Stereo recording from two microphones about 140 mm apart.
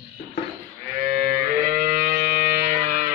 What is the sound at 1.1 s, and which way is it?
Music, 90° right.